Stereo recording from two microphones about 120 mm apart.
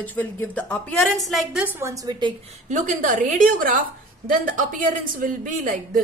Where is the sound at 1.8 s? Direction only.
25° right (ahead or behind).